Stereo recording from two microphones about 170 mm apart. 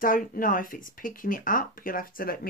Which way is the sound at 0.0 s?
55° left (ahead or behind).